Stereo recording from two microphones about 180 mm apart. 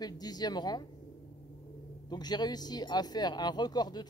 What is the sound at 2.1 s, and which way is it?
Speech, 20° left (ahead or behind).